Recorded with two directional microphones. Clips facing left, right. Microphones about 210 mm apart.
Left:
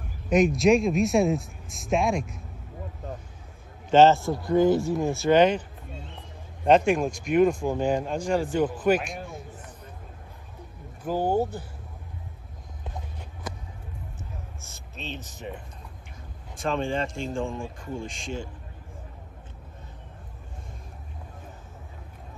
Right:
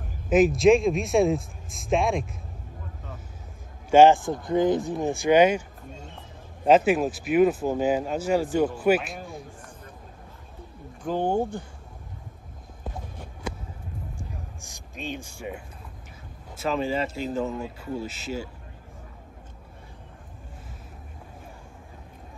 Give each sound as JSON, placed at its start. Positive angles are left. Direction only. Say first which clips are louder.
{"t": 0.3, "sound": "speech", "louder": "right 2 dB", "side_deg": 0}
{"t": 3.9, "sound": "a man's voice", "louder": "right 2 dB", "side_deg": -15}
{"t": 6.6, "sound": "speech", "louder": "right 1 dB", "side_deg": -5}
{"t": 11.1, "sound": "speech", "louder": "even", "side_deg": 5}
{"t": 14.6, "sound": "a man's voice", "louder": "right 5 dB", "side_deg": -15}